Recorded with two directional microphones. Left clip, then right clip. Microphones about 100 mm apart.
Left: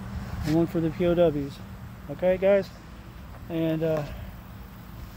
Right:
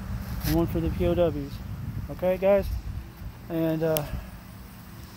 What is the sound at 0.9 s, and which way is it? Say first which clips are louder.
Speech: left 2 dB; 60° left (ahead or behind).